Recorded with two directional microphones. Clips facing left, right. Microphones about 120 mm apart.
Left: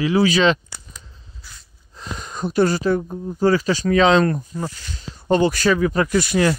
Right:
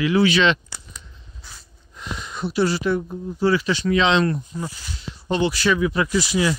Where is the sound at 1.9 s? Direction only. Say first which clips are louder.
Left 1 dB; 40° left (ahead or behind).